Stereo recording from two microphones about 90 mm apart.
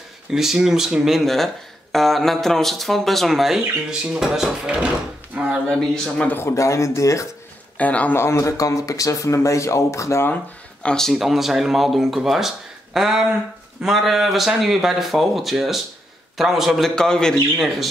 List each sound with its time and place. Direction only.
0.3 s speech: 5° right (ahead or behind)
4.6 s drawer open or close: 15° right (ahead or behind)
6.0 s speech: 10° left (ahead or behind)
6.3 s speech: 30° left (ahead or behind)
7.7 s a man's voice: 15° left (ahead or behind)
8.2 s speech: 30° left (ahead or behind)
10.3 s speech: 10° left (ahead or behind)